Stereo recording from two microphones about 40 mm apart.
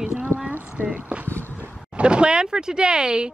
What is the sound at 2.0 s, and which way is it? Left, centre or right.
Speech, right.